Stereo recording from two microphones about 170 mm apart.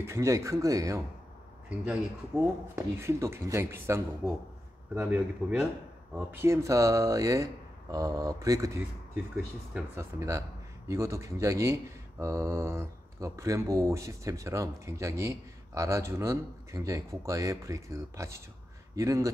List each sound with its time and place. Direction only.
0.0 s speech: 15° right (ahead or behind)
5.1 s speech: 5° right (ahead or behind)
6.3 s speech: 15° right (ahead or behind)